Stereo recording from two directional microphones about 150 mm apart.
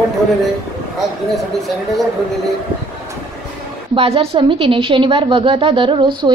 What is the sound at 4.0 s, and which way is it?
A woman's voice, 40° right (ahead or behind).